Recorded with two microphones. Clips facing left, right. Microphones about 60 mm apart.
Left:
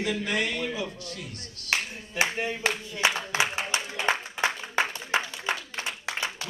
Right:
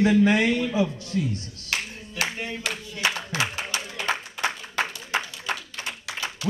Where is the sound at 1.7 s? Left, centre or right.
Left.